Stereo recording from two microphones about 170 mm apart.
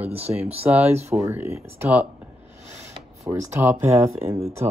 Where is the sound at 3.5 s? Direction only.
15° right (ahead or behind).